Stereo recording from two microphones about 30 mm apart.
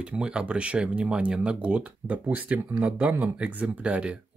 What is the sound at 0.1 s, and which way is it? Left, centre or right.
Speech, right.